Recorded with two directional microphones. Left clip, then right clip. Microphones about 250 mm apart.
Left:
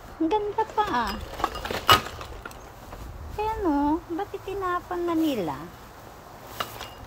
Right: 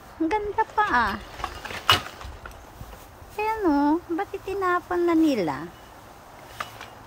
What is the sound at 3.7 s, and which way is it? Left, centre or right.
Speech, right.